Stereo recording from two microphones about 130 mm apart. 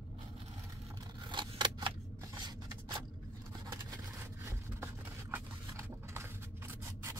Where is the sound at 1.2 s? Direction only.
35° right (ahead or behind).